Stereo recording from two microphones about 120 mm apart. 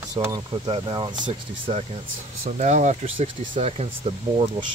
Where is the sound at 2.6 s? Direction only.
80° right.